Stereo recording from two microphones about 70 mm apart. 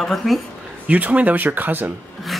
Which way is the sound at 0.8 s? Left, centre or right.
Right.